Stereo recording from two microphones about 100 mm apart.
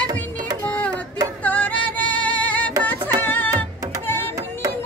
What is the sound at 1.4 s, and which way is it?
Music, 15° left (ahead or behind).